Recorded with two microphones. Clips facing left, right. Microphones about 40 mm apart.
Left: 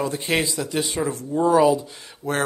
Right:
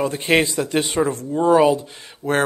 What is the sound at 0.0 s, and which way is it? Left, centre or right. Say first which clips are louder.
Speech: right 5 dB; right.